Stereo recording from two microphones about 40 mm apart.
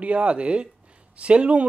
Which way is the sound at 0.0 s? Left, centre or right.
Right.